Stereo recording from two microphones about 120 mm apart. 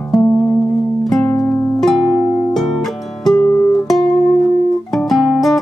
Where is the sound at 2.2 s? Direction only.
25° left (ahead or behind).